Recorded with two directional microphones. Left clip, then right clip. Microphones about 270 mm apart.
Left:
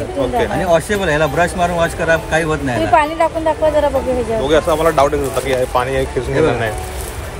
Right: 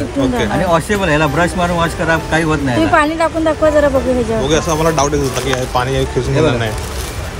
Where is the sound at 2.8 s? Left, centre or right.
Right.